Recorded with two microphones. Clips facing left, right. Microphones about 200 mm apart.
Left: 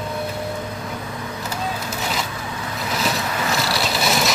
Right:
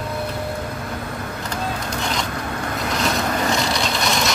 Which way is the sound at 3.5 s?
5° left (ahead or behind).